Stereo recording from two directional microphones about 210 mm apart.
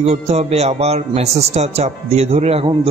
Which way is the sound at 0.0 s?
30° right (ahead or behind).